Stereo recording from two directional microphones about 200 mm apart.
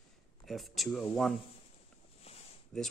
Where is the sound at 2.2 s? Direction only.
30° left (ahead or behind).